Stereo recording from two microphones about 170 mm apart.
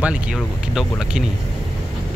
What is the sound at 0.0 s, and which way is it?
Speech, 5° right (ahead or behind).